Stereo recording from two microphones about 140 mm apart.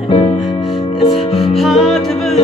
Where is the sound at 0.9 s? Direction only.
Centre (ahead or behind).